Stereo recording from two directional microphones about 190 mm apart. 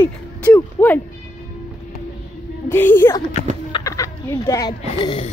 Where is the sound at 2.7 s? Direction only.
10° left (ahead or behind); by 5.3 s 25° left (ahead or behind).